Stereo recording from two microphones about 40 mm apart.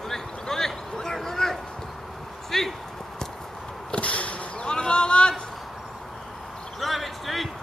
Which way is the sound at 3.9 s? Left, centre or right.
Left.